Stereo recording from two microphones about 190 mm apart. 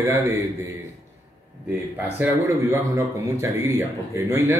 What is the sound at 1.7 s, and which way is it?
Speech, 15° right (ahead or behind).